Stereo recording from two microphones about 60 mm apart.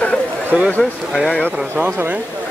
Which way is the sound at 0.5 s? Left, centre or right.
Right.